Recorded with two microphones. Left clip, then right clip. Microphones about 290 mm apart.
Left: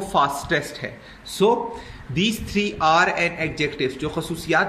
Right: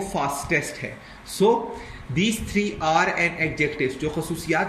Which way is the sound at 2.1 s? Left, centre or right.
Left.